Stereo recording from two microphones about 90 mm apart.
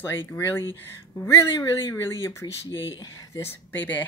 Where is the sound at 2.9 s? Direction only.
45° left (ahead or behind).